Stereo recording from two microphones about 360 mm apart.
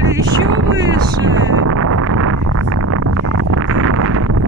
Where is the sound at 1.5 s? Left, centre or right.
Right.